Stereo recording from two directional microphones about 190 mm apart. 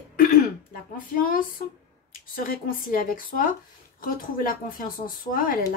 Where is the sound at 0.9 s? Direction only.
45° left (ahead or behind).